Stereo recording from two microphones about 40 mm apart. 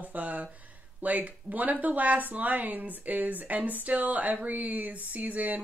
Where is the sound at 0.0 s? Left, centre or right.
Right.